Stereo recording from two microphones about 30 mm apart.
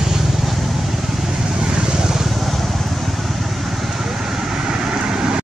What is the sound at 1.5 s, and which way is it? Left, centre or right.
Vehicle, right.